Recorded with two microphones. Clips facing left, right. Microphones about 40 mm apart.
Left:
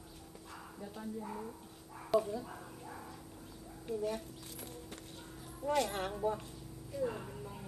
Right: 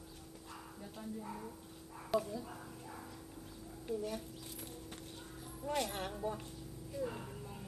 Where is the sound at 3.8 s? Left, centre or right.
Centre.